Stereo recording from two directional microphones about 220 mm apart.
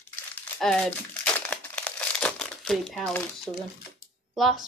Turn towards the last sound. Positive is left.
turn(degrees=0)  # may be behind; listen again after turning